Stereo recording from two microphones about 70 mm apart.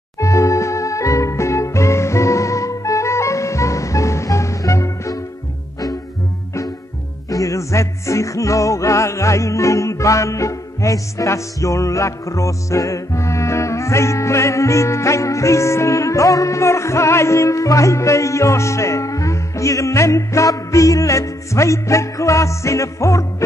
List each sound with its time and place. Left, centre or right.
0.2 s music: left
7.2 s music: left